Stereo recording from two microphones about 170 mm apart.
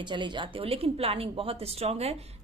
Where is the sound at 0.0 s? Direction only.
30° right (ahead or behind).